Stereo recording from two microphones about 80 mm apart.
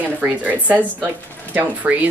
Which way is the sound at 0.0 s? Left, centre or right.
Right.